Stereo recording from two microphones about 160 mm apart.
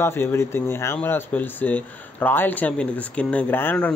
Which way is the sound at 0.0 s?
15° left (ahead or behind).